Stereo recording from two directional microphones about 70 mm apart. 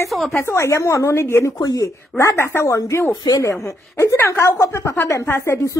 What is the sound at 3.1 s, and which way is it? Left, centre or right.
Speech, left.